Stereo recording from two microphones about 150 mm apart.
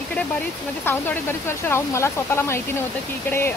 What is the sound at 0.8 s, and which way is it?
Speech, 15° left (ahead or behind).